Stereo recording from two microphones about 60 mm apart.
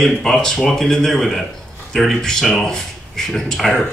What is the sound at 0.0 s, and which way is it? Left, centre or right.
Speech, centre.